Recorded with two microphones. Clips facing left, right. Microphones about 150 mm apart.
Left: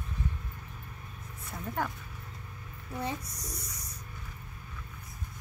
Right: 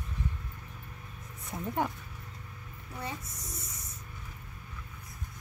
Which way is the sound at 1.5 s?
15° right (ahead or behind).